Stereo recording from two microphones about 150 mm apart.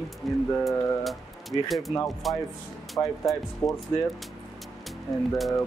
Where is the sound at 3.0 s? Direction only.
20° left (ahead or behind).